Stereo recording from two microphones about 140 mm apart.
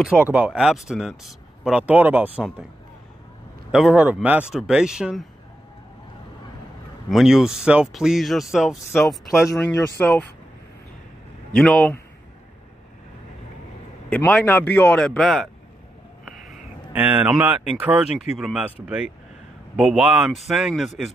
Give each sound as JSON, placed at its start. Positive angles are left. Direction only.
{"t": 0.3, "sound": "speech", "side_deg": -5}
{"t": 3.7, "sound": "speech", "side_deg": -5}
{"t": 7.1, "sound": "speech", "side_deg": 0}
{"t": 9.6, "sound": "a man's voice", "side_deg": 10}
{"t": 11.5, "sound": "a man's voice", "side_deg": 5}
{"t": 14.1, "sound": "a man's voice", "side_deg": 10}
{"t": 16.9, "sound": "speech", "side_deg": -10}